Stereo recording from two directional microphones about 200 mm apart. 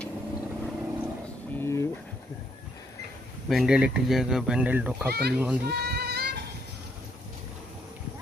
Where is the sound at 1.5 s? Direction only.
15° left (ahead or behind).